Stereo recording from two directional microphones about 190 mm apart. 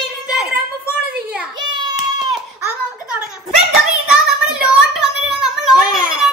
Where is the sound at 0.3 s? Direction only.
5° right (ahead or behind).